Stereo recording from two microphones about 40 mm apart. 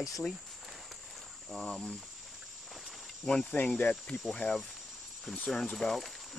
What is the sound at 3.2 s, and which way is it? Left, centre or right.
Cricket, centre.